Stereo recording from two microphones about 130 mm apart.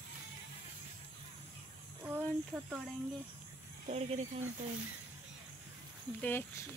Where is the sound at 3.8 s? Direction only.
60° right (ahead or behind).